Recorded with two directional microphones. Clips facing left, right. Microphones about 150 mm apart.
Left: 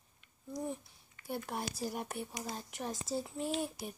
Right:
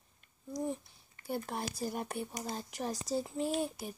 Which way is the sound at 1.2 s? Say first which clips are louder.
Right 2 dB; centre (ahead or behind).